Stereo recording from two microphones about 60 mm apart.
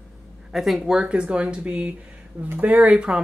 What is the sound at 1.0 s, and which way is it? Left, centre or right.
Speech, centre.